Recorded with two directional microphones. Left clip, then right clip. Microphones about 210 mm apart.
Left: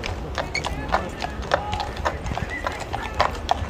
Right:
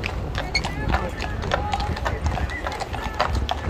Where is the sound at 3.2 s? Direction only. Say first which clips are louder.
Left 2 dB; 25° left (ahead or behind).